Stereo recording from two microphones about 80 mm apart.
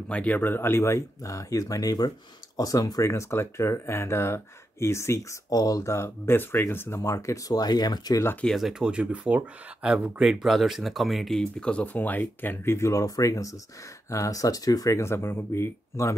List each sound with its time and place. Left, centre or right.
0.1 s speech: centre; by 3.0 s left
3.0 s speech: left
5.5 s speech: left
7.0 s speech: left
8.5 s speech: centre
10.4 s speech: centre
11.7 s speech: centre
12.7 s speech: left
15.0 s speech: left